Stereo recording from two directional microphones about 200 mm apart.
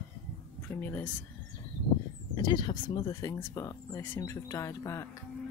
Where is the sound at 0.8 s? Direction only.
10° left (ahead or behind).